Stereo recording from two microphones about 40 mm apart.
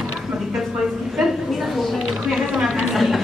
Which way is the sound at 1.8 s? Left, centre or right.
Centre.